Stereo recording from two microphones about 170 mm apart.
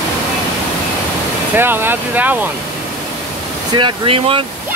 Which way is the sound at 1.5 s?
10° right (ahead or behind).